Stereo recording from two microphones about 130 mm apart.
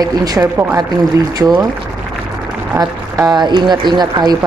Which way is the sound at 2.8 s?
30° right (ahead or behind).